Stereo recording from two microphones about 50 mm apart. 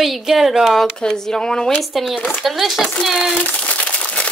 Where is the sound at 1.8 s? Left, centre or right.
Centre.